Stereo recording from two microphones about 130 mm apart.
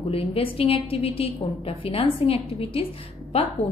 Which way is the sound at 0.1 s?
45° left (ahead or behind).